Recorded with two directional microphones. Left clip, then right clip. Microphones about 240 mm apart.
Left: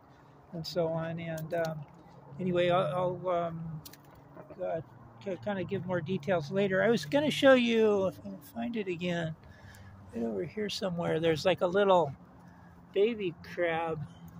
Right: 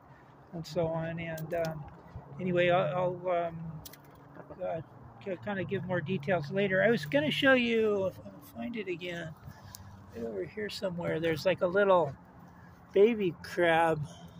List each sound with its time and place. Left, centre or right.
0.6 s speech: centre
4.6 s speech: centre; by 9.3 s left
10.4 s speech: left
12.9 s speech: right
13.5 s speech: right